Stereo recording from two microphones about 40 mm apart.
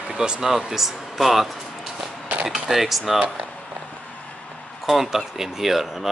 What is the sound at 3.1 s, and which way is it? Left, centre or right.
Speech, right.